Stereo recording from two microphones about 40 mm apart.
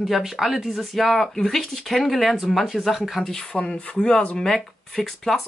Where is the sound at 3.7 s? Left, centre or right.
Centre.